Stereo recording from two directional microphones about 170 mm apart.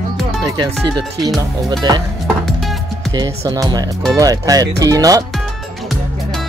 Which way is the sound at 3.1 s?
20° right (ahead or behind).